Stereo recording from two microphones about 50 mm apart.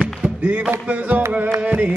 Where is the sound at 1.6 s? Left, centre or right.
Right.